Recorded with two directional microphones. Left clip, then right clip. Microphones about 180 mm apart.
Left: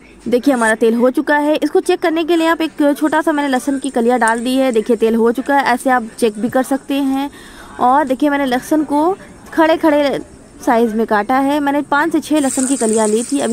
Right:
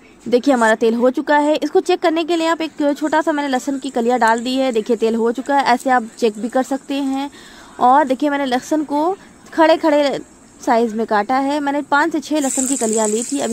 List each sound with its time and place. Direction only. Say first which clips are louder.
0.3 s speech: even; 30° left (ahead or behind)